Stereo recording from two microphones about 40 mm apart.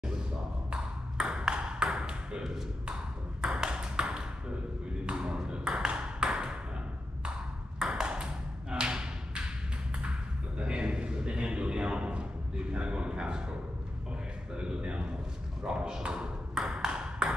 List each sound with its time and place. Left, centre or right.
0.7 s ping: right
5.5 s ping: centre
7.8 s ping: centre
8.3 s thump: right
10.6 s a sound: right
14.5 s speech: right
15.6 s ping: right